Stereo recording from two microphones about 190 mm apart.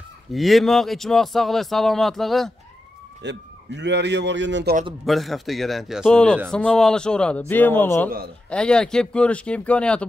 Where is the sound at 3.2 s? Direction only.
65° right (ahead or behind).